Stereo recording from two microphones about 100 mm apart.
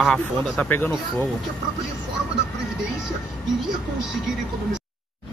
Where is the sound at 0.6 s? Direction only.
20° left (ahead or behind).